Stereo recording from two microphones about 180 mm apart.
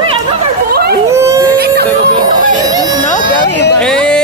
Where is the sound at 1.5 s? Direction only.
60° right (ahead or behind).